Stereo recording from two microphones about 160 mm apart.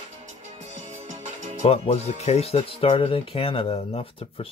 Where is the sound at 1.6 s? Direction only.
40° left (ahead or behind).